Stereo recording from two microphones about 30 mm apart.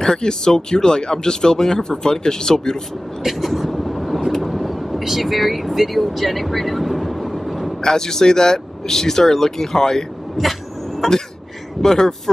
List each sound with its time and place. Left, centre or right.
0.0 s speech: left
3.3 s vehicle: centre
7.8 s speech: centre
10.4 s cough: centre
11.8 s speech: centre